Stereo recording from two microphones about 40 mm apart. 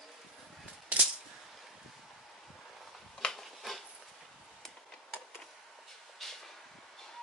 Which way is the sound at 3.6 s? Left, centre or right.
Centre.